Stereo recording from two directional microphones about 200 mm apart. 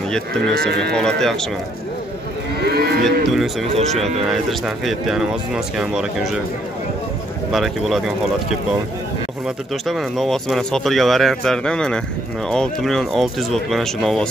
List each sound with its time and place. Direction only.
0.6 s speech: 55° right (ahead or behind)
0.9 s speech: 5° left (ahead or behind)
2.6 s moo: 50° right (ahead or behind)
3.0 s speech: centre (ahead or behind)
7.5 s speech: centre (ahead or behind)
9.8 s speech: centre (ahead or behind)